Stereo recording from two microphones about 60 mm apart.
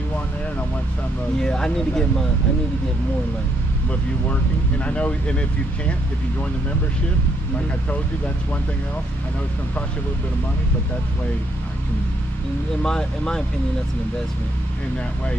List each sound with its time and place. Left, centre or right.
1.4 s speech: centre
4.3 s speech: left
12.8 s speech: centre